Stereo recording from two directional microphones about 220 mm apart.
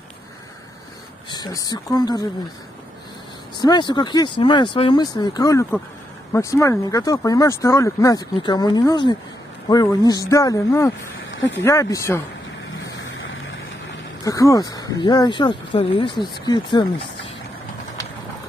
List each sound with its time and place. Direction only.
1.3 s speech: 15° left (ahead or behind)
3.5 s speech: 20° left (ahead or behind)
11.2 s vehicle: 55° left (ahead or behind)
11.6 s speech: 15° left (ahead or behind)
13.0 s vehicle: 60° left (ahead or behind)
14.2 s speech: 15° left (ahead or behind)